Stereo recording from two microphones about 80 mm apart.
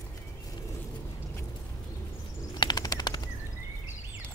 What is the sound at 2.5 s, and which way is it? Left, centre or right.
Machine gun, left.